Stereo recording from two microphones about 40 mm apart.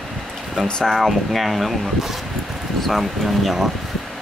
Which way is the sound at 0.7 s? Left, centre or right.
Centre.